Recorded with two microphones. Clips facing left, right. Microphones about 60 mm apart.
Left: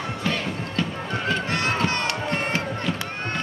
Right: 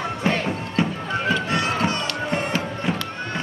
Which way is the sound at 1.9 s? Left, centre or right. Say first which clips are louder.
Right 1 dB; left.